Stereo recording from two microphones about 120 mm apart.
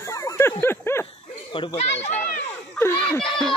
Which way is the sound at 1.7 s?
65° left (ahead or behind).